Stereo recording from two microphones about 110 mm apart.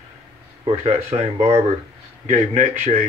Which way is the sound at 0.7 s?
90° right.